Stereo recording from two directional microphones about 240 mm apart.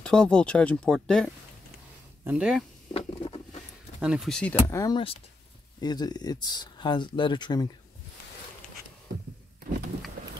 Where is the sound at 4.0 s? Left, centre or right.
Centre.